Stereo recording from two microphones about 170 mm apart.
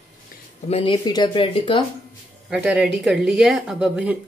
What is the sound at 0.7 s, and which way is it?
Speech, 30° left (ahead or behind).